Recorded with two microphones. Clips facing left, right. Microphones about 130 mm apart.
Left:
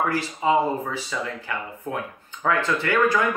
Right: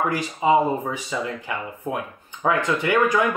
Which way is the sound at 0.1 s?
20° right (ahead or behind).